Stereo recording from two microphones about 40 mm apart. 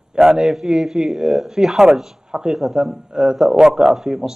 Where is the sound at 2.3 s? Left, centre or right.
Centre.